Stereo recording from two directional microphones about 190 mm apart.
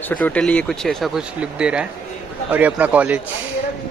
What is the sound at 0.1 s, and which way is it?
A man's voice, 5° left (ahead or behind).